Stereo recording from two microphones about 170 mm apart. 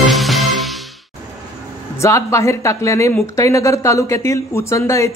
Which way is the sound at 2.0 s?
20° left (ahead or behind).